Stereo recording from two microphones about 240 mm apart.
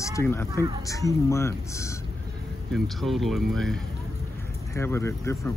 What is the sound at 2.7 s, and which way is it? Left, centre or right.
Speech, centre.